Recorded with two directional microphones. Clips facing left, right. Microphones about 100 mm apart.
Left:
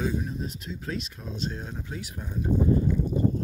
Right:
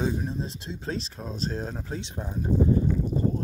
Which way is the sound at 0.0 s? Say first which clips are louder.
Right 1 dB; 30° right (ahead or behind).